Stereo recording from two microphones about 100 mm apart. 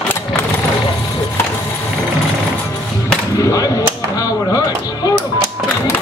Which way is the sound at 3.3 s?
35° left (ahead or behind).